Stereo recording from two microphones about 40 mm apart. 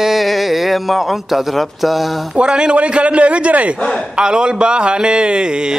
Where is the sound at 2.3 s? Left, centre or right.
Right.